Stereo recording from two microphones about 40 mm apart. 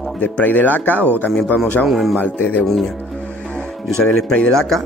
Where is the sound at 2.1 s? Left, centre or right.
Left.